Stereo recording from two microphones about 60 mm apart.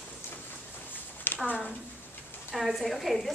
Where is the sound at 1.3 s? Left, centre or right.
Left.